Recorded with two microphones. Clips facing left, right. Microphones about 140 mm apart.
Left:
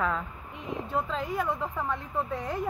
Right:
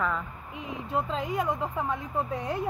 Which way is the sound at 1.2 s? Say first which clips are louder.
Right 1 dB; 15° right (ahead or behind).